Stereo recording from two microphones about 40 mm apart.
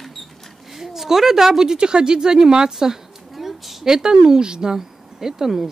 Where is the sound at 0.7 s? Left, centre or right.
Centre.